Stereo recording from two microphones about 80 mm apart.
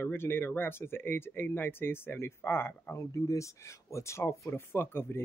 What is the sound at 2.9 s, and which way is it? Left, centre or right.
Speech, left.